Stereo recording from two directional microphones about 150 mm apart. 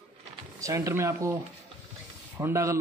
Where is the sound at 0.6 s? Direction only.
20° right (ahead or behind).